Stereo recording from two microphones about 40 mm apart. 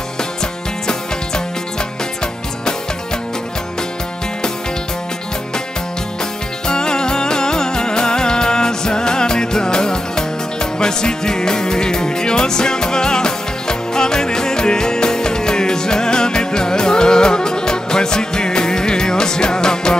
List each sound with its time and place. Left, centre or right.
0.2 s music: centre
6.7 s music: centre